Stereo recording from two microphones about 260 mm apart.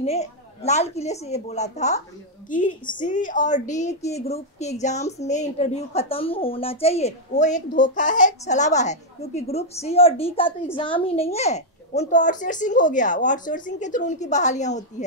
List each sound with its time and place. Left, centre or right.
0.0 s a woman's voice: left